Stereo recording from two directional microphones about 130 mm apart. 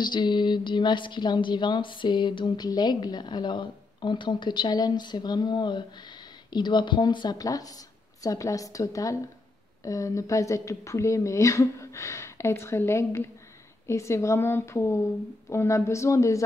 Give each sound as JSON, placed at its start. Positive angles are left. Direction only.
{"t": 0.0, "sound": "a woman's voice", "side_deg": 35}